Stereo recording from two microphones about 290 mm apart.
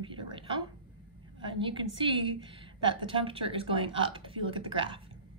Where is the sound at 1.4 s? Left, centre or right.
Centre.